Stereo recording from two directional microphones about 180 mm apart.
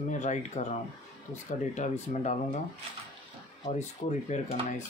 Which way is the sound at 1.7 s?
40° left (ahead or behind).